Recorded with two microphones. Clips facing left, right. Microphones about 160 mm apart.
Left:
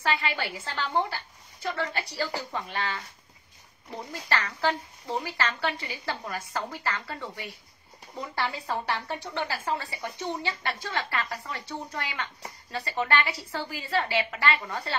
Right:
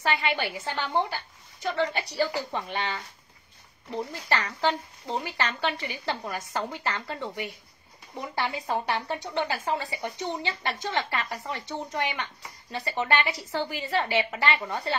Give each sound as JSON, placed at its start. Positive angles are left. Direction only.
{"t": 0.0, "sound": "speech", "side_deg": -20}
{"t": 4.1, "sound": "speech", "side_deg": -20}